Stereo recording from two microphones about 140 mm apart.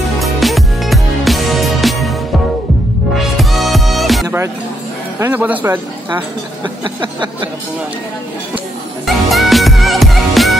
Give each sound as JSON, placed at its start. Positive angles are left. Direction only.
{"t": 0.2, "sound": "music", "side_deg": 0}
{"t": 3.3, "sound": "music", "side_deg": 0}
{"t": 5.2, "sound": "speech", "side_deg": -15}
{"t": 6.6, "sound": "a sound", "side_deg": -35}
{"t": 9.0, "sound": "music", "side_deg": 0}